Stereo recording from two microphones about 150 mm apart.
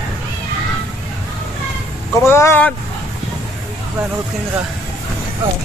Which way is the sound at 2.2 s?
15° left (ahead or behind).